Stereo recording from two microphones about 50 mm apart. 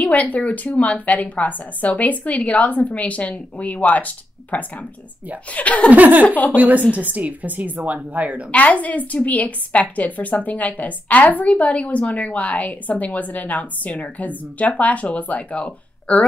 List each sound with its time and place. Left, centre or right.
0.0 s a woman's voice: left
5.9 s a woman's voice: right
8.5 s a woman's voice: left